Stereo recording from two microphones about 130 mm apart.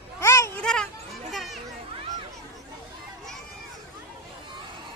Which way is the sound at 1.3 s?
Centre (ahead or behind).